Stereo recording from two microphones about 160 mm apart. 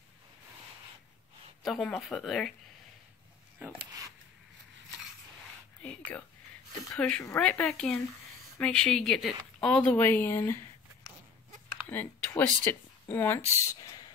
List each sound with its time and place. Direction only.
1.6 s a woman's voice: centre (ahead or behind)
6.9 s a woman's voice: 5° left (ahead or behind)
11.9 s speech: 10° left (ahead or behind)
13.7 s a sound: 25° left (ahead or behind)